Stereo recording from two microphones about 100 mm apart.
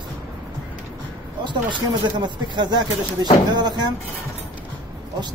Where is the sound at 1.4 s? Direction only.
50° right (ahead or behind).